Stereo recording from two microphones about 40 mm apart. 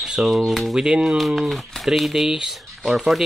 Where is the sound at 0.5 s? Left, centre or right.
Centre.